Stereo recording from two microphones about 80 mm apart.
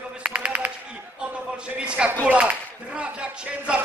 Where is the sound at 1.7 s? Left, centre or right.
Centre.